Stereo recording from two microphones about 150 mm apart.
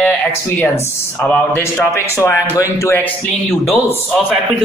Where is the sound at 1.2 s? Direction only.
10° left (ahead or behind).